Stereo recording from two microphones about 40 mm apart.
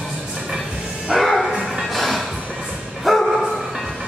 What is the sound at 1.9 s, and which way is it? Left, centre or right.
Music, centre.